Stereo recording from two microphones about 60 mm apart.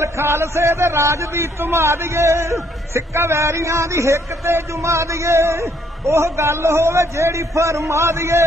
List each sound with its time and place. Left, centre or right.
0.0 s a man's voice: right